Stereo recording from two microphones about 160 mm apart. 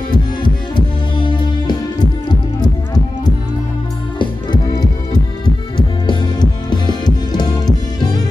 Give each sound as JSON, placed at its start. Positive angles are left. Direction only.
{"t": 0.1, "sound": "music", "side_deg": 30}